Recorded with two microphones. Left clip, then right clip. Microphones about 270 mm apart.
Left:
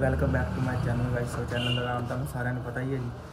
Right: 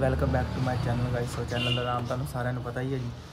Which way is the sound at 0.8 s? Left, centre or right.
Centre.